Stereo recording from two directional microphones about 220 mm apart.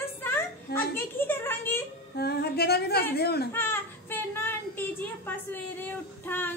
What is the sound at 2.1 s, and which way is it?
A woman's voice, 45° left (ahead or behind).